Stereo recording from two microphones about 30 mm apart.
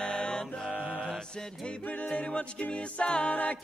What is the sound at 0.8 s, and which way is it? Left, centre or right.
Mantra, right.